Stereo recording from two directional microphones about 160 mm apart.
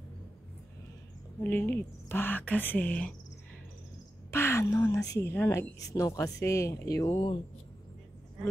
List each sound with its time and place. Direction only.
1.4 s speech: 10° left (ahead or behind)
4.3 s speech: 15° left (ahead or behind)